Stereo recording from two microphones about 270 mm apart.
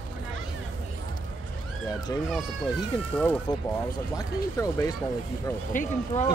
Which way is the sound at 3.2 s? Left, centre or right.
Centre.